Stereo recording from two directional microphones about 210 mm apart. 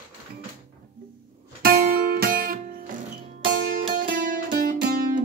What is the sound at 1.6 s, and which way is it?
Music, 45° right (ahead or behind).